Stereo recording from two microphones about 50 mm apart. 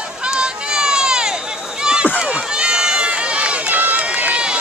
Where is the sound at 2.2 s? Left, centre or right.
Right.